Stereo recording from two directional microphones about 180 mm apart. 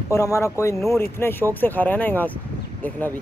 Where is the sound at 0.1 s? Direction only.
15° left (ahead or behind).